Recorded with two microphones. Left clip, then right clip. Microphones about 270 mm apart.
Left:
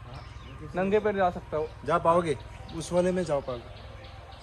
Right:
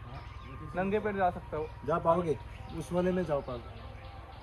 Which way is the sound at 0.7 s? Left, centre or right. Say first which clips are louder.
Left 6 dB; left.